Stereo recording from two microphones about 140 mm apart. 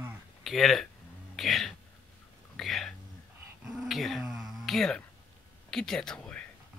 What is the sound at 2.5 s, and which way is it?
Whispering, centre (ahead or behind).